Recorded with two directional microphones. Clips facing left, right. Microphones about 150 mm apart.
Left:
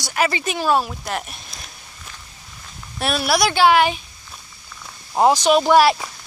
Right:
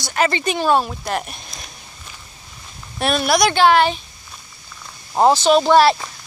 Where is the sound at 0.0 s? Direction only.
5° left (ahead or behind).